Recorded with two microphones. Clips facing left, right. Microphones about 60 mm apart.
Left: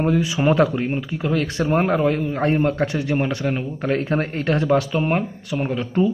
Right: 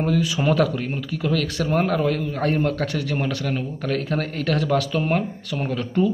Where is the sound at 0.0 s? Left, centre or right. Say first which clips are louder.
Left 2 dB; left.